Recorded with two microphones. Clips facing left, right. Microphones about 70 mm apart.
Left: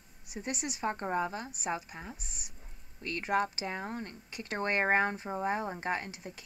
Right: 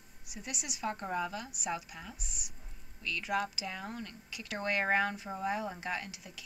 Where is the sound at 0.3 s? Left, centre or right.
Left.